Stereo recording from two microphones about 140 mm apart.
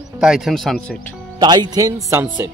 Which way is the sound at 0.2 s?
5° right (ahead or behind).